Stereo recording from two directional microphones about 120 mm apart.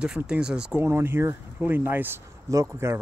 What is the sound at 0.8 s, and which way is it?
Speech, 20° right (ahead or behind).